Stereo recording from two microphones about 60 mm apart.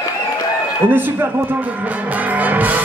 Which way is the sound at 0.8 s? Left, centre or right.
Right.